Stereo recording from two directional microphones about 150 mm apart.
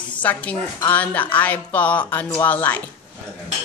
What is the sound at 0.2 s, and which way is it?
Speech, 10° left (ahead or behind).